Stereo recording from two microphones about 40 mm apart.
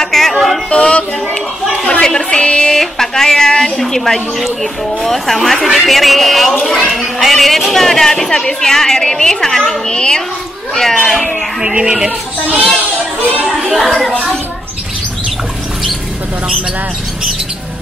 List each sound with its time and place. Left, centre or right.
0.0 s music: centre
0.7 s speech: left
1.3 s a sound: left
2.7 s a woman's voice: centre
10.7 s a woman's voice: centre
11.7 s speech: centre
12.4 s a child's voice: right
13.5 s children playing: centre